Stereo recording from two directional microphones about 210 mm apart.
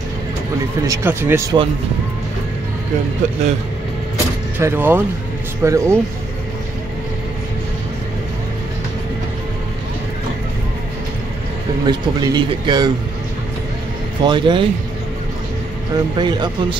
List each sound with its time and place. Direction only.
0.8 s speech: 10° right (ahead or behind)
4.6 s speech: 10° right (ahead or behind)
11.8 s speech: 20° right (ahead or behind)
14.2 s speech: 20° right (ahead or behind)
15.9 s speech: 20° right (ahead or behind)